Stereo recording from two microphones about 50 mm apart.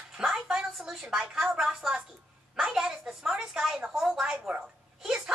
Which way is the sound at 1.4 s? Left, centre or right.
Centre.